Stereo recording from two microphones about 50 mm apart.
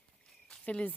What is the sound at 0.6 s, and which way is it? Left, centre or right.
Speech, left.